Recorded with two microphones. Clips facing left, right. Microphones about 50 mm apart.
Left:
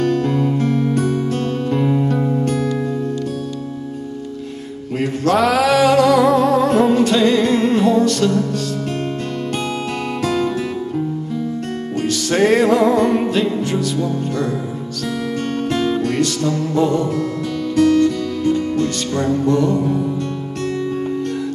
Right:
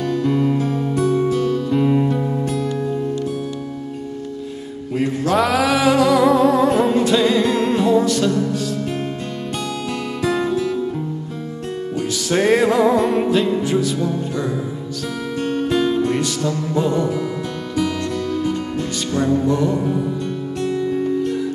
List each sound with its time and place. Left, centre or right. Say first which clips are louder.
0.0 s music: left 1 dB; left
5.3 s music: left 3 dB; centre
12.2 s music: left 1 dB; centre
19.6 s music: left 2 dB; centre